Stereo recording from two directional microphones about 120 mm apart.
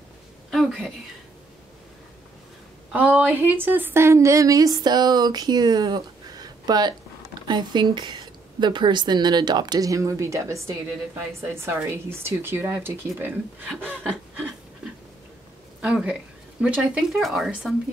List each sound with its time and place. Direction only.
0.5 s a sound: centre (ahead or behind)
2.9 s a woman's voice: 15° right (ahead or behind)
15.8 s speech: 10° right (ahead or behind)